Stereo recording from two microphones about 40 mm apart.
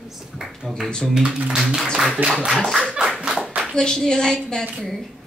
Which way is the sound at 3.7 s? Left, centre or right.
Centre.